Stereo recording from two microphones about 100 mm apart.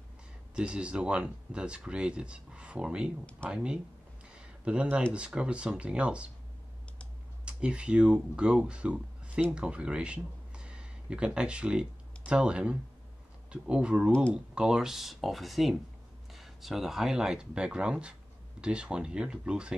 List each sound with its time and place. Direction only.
0.6 s speech: 10° right (ahead or behind)
4.3 s a sound: 10° right (ahead or behind)
5.1 s speech: 10° right (ahead or behind)
7.4 s speech: 10° right (ahead or behind)